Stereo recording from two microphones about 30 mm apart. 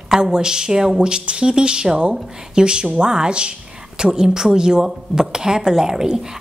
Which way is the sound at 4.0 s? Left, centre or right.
Right.